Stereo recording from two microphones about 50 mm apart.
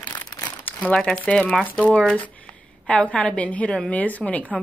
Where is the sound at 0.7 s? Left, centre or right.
Left.